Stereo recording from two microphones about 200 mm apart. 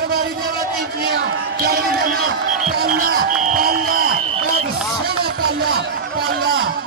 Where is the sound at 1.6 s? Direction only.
45° right (ahead or behind).